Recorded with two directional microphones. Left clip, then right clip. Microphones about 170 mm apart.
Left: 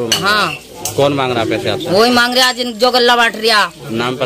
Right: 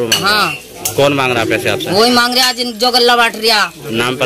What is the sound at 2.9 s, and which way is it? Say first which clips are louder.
Speech: right 1 dB; 30° left (ahead or behind).